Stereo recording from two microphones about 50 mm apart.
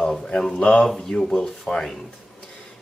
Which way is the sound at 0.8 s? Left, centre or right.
Centre.